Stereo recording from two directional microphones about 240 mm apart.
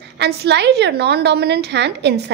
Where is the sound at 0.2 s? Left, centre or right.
Right.